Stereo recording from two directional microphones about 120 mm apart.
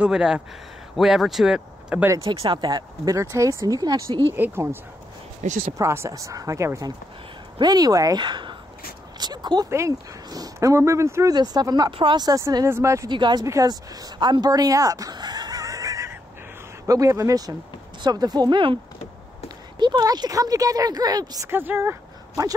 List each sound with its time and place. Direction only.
0.0 s speech: 5° right (ahead or behind)
2.2 s speech: 35° right (ahead or behind)
4.3 s speech: 20° right (ahead or behind)
5.4 s speech: 80° right
5.8 s speech: 25° right (ahead or behind)
9.7 s speech: 25° right (ahead or behind)
11.3 s speech: 35° right (ahead or behind)
13.1 s speech: 40° right (ahead or behind)
19.8 s speech: 35° right (ahead or behind)
21.5 s speech: 20° right (ahead or behind)